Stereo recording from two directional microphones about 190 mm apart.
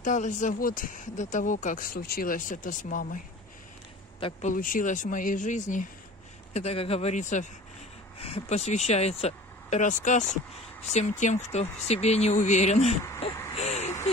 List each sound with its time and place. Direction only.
0.0 s speech: 40° left (ahead or behind)
4.2 s speech: 40° left (ahead or behind)
13.6 s a sound: 35° left (ahead or behind)